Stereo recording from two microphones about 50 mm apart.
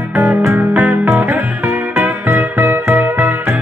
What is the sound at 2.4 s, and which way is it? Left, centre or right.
Music, right.